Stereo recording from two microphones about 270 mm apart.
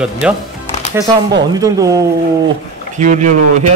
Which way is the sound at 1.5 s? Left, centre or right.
Centre.